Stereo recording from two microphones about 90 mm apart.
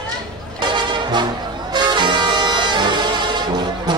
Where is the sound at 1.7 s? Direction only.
55° right (ahead or behind).